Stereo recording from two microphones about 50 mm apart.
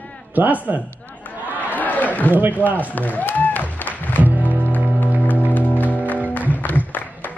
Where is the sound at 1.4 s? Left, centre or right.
Right.